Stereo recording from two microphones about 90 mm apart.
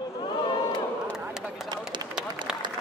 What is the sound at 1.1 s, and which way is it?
Speech, 5° right (ahead or behind).